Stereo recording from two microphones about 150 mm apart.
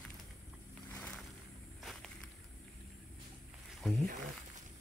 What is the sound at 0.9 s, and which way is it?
Vehicle, 10° left (ahead or behind).